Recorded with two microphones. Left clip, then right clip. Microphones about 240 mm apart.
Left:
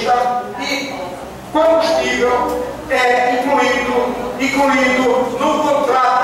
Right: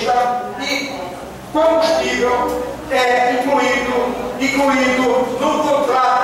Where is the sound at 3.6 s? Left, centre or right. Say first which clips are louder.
Left 1 dB; centre.